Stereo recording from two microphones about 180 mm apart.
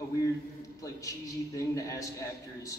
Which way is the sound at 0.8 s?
20° left (ahead or behind).